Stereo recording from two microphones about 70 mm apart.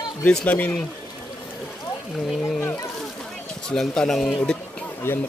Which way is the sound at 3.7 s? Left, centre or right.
Centre.